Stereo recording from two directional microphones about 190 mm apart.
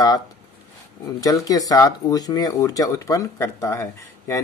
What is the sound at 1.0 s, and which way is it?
Speech, 20° left (ahead or behind).